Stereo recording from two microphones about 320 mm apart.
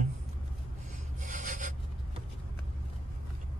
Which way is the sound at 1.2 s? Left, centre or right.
Right.